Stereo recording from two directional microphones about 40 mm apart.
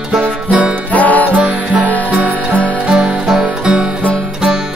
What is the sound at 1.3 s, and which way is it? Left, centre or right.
Music, right.